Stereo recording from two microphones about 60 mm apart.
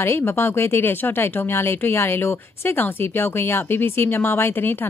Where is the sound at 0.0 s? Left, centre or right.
Left.